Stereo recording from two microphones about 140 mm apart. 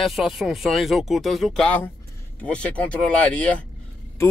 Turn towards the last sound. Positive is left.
turn(degrees=10)  # may be behind; listen again after turning